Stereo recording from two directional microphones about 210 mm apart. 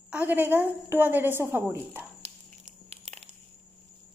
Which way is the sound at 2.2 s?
30° right (ahead or behind).